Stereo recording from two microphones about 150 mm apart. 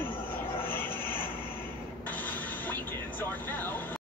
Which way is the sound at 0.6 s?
15° left (ahead or behind).